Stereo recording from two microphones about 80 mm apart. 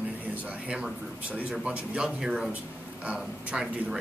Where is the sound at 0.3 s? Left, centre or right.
Centre.